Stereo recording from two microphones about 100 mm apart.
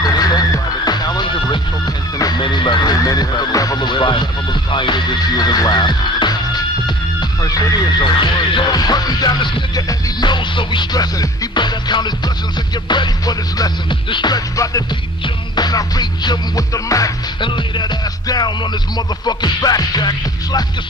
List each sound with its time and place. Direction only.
0.0 s music: 40° left (ahead or behind)
2.4 s music: 55° left (ahead or behind)
14.6 s music: 35° left (ahead or behind)
17.4 s music: 50° left (ahead or behind)